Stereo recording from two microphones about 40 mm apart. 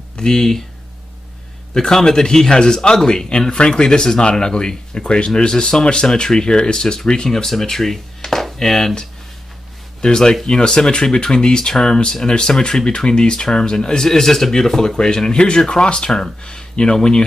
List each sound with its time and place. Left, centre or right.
0.1 s speech: centre
1.7 s speech: centre
10.0 s speech: centre